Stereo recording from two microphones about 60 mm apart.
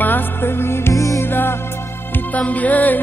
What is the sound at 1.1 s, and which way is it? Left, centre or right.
Music, left.